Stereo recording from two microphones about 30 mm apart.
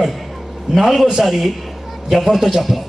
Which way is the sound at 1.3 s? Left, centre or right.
Centre.